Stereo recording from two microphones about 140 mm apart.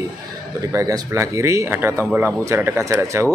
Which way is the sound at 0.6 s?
25° right (ahead or behind).